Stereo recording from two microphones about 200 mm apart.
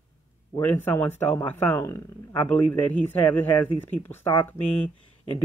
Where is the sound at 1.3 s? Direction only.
15° left (ahead or behind).